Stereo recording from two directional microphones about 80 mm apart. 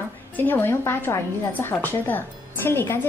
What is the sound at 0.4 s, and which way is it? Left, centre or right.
A woman's voice, left.